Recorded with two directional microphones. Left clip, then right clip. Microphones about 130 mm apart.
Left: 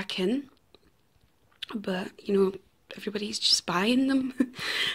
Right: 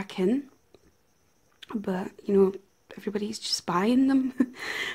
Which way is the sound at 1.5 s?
25° right (ahead or behind).